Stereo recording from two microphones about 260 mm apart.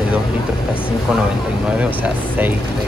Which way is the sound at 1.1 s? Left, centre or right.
Centre.